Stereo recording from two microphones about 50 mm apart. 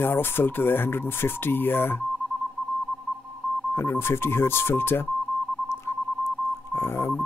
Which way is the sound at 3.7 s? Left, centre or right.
Left.